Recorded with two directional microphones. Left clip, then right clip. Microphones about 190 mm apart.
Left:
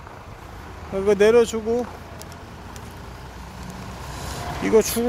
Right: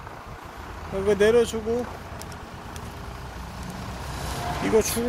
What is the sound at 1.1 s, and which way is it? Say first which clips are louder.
Speech: left 4 dB; 30° left (ahead or behind).